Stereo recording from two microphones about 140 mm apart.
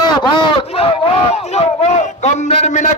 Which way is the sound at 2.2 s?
50° left (ahead or behind).